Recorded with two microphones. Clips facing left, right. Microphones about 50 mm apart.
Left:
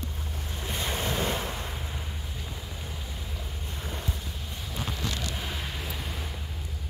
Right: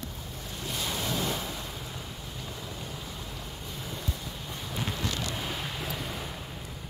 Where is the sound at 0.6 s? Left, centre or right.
Left.